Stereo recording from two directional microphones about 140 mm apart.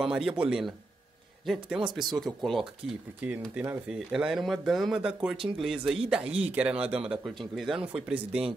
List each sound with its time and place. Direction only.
0.0 s speech: 5° right (ahead or behind)
3.2 s speech: 10° right (ahead or behind)